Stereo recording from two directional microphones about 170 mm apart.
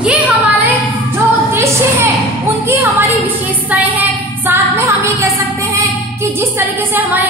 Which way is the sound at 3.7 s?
10° right (ahead or behind).